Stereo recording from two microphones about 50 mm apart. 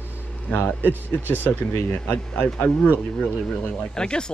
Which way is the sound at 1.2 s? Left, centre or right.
Left.